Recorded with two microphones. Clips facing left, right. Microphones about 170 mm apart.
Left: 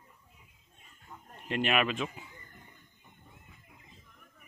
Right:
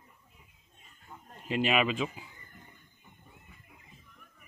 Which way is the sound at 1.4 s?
Centre (ahead or behind).